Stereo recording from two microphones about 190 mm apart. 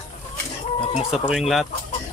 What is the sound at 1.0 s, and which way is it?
Speech, centre (ahead or behind).